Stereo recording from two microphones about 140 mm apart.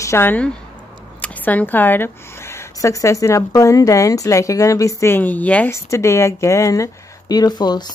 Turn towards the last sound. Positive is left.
turn(degrees=30)  # may be behind; listen again after turning